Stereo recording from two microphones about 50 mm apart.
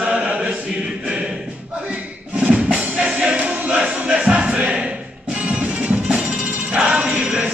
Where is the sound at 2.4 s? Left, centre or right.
Right.